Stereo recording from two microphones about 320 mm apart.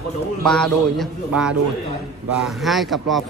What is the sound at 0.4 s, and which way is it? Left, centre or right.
A man's voice, centre.